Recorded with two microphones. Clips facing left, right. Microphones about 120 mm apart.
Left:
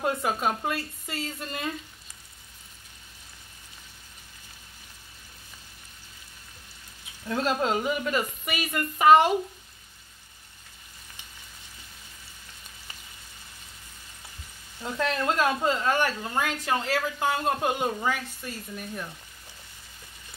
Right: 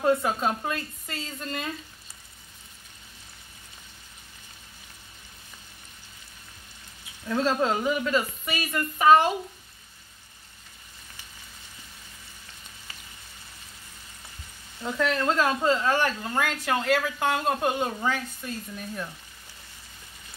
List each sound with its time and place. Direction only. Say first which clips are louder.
0.0 s speech: right 3 dB; 5° left (ahead or behind)
7.2 s a woman's voice: right 2 dB; 15° left (ahead or behind)
14.8 s a woman's voice: right 2 dB; 15° left (ahead or behind)
16.2 s speech: right 1 dB; centre (ahead or behind)